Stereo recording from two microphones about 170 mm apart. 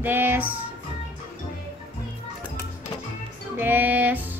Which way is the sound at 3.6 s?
10° right (ahead or behind).